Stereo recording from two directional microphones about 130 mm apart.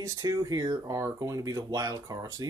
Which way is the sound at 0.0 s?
25° right (ahead or behind).